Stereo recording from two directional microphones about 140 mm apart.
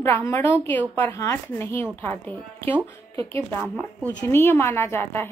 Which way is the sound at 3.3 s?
15° left (ahead or behind).